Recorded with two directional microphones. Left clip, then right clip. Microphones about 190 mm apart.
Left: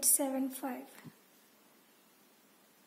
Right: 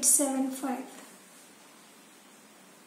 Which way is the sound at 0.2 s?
55° left (ahead or behind).